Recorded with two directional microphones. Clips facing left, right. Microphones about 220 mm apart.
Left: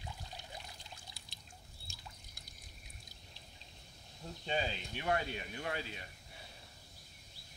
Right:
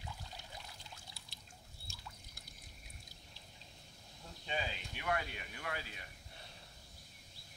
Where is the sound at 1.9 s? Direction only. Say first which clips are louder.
Right 1 dB; 15° left (ahead or behind).